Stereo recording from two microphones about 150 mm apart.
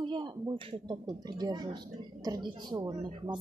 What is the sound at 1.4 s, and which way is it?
Speech, 25° right (ahead or behind).